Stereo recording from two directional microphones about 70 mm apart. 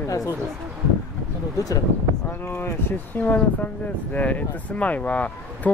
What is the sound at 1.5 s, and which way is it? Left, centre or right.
Speech, left.